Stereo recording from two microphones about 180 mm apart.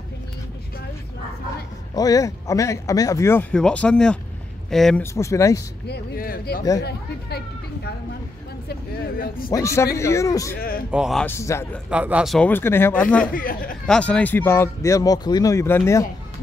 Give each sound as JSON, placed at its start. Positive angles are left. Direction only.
{"t": 2.0, "sound": "speech", "side_deg": 20}
{"t": 5.0, "sound": "speech", "side_deg": 15}
{"t": 5.9, "sound": "speech", "side_deg": 60}
{"t": 9.5, "sound": "speech", "side_deg": 15}
{"t": 10.9, "sound": "speech", "side_deg": 0}
{"t": 11.2, "sound": "speech", "side_deg": 15}
{"t": 11.9, "sound": "speech", "side_deg": -5}
{"t": 12.4, "sound": "speech", "side_deg": 10}
{"t": 13.3, "sound": "speech", "side_deg": 50}
{"t": 13.8, "sound": "speech", "side_deg": 5}